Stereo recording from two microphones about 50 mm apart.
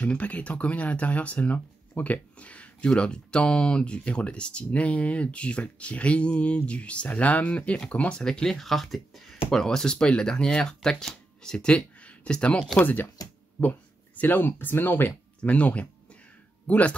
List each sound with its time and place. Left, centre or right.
0.1 s speech: left
8.3 s speech: centre
12.7 s speech: left
15.4 s speech: left